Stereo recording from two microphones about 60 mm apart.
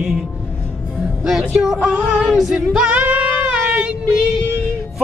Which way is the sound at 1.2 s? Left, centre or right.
Centre.